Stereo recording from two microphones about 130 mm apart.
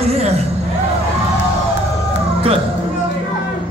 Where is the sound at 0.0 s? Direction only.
55° right (ahead or behind).